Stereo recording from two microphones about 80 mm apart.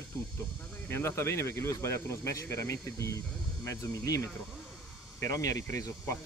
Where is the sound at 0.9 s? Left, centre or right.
Left.